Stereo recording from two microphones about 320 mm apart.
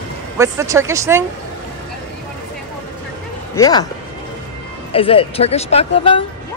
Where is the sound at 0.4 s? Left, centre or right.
Centre.